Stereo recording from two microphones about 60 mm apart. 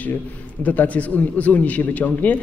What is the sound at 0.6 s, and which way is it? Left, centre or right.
A man's voice, left.